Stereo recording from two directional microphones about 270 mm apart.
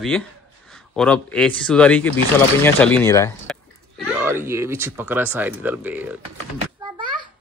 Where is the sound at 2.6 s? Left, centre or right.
Centre.